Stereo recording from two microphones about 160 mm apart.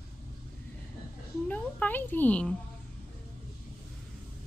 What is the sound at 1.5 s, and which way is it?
Speech, 10° left (ahead or behind).